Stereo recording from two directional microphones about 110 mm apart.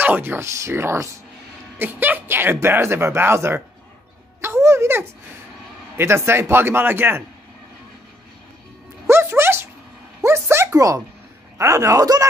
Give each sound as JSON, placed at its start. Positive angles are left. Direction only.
{"t": 0.0, "sound": "speech", "side_deg": -15}
{"t": 9.0, "sound": "a sound", "side_deg": -20}
{"t": 11.5, "sound": "speech", "side_deg": -30}